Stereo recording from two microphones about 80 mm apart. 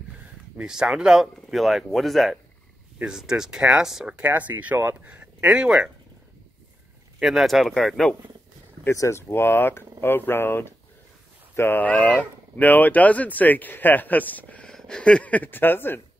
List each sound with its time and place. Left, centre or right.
0.6 s speech: centre
4.1 s speech: right
5.5 s speech: centre
7.2 s speech: centre
8.8 s speech: left
11.9 s speech: centre
14.7 s speech: centre; by 16.0 s left